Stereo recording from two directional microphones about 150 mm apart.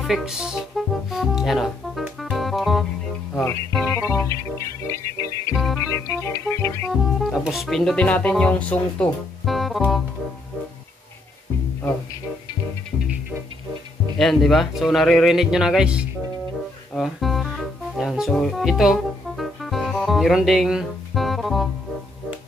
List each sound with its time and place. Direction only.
0.0 s music: centre (ahead or behind)
3.8 s music: 20° left (ahead or behind)
6.9 s speech: centre (ahead or behind)
14.1 s speech: centre (ahead or behind)
16.9 s music: centre (ahead or behind)